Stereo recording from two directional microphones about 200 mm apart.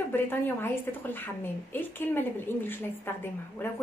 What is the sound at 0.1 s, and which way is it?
A woman's voice, 10° left (ahead or behind).